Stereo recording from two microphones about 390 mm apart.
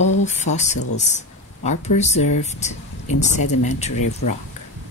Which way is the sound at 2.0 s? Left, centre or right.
Centre.